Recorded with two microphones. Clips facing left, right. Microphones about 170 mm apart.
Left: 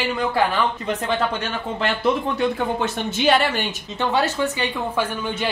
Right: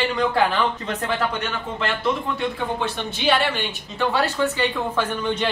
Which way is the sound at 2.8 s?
45° left (ahead or behind).